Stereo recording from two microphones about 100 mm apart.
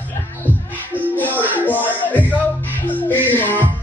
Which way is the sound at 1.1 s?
15° left (ahead or behind).